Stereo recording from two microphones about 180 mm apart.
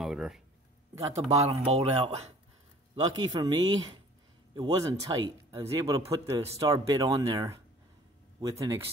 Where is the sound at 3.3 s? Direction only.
25° right (ahead or behind).